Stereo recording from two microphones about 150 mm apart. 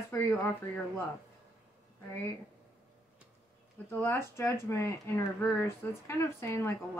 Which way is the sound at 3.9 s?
15° left (ahead or behind).